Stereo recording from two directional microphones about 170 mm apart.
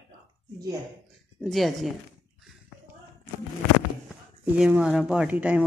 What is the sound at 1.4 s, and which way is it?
Speech, centre (ahead or behind).